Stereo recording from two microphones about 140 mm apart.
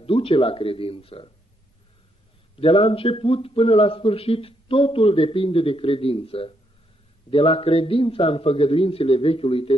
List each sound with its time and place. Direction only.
0.0 s speech: 45° left (ahead or behind)
2.6 s speech: 40° left (ahead or behind)